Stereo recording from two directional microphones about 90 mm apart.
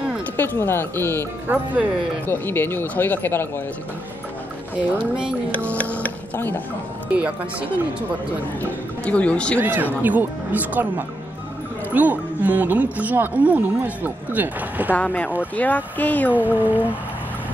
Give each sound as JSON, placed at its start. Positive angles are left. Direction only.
{"t": 0.4, "sound": "speech", "side_deg": 25}
{"t": 1.5, "sound": "speech", "side_deg": -15}
{"t": 2.2, "sound": "speech", "side_deg": 25}
{"t": 4.7, "sound": "speech", "side_deg": -10}
{"t": 5.7, "sound": "music", "side_deg": 15}
{"t": 8.5, "sound": "speech", "side_deg": 15}
{"t": 9.6, "sound": "speech", "side_deg": -20}
{"t": 15.0, "sound": "speech", "side_deg": 15}
{"t": 16.6, "sound": "speech", "side_deg": -20}